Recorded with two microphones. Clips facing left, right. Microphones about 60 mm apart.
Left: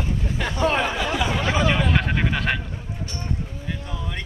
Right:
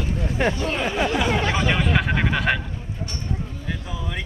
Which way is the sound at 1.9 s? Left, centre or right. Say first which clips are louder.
Right 1 dB; centre.